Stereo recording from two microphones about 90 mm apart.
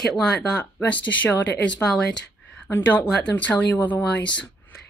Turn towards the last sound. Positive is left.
turn(degrees=15)  # may be behind; listen again after turning